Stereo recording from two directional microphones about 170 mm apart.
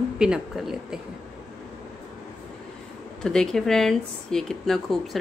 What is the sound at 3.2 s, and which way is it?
Speech, 5° left (ahead or behind).